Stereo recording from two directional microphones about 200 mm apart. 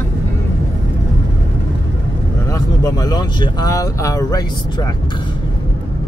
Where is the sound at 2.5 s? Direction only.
20° left (ahead or behind).